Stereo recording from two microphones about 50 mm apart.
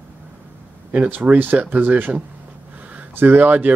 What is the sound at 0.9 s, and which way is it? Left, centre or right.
Speech, right.